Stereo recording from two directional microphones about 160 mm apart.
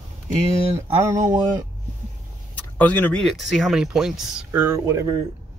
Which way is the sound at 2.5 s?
10° left (ahead or behind).